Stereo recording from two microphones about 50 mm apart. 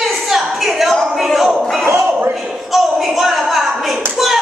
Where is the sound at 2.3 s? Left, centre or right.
Centre.